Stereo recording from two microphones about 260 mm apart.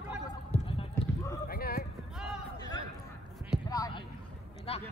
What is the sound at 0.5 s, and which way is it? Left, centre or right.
Clip-clop, left.